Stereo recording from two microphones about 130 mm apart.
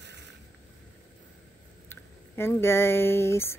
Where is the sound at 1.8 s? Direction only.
20° left (ahead or behind).